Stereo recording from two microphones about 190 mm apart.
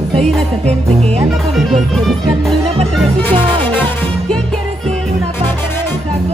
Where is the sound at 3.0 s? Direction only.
10° left (ahead or behind).